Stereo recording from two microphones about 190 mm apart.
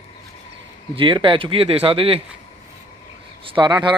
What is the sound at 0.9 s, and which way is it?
A man's voice, 25° right (ahead or behind).